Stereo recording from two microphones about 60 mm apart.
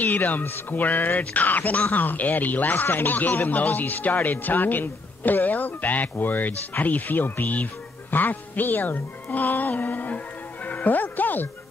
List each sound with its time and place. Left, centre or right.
0.0 s speech: left